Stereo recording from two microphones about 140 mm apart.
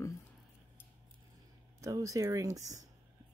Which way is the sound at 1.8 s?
25° right (ahead or behind).